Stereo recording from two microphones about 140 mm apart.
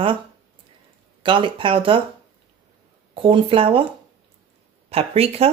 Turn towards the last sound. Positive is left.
turn(degrees=-45)  # may be behind; listen again after turning